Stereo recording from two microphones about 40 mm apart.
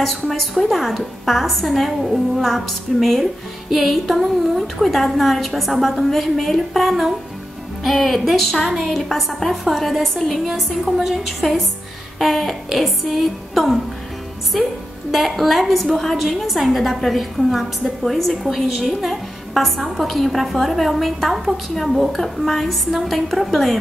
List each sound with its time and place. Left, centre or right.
0.0 s a woman's voice: centre
8.6 s a woman's voice: centre
18.0 s a woman's voice: centre